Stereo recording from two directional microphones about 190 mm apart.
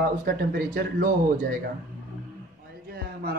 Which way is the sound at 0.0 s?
55° right (ahead or behind).